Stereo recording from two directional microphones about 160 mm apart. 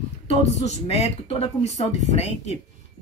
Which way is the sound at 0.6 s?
40° left (ahead or behind).